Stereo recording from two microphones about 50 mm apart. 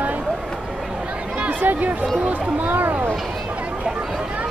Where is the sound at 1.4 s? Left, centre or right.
Right.